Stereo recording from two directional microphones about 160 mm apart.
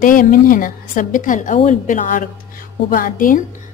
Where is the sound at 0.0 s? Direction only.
55° left (ahead or behind).